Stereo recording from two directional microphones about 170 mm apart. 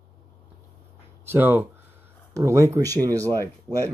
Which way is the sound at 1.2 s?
10° right (ahead or behind).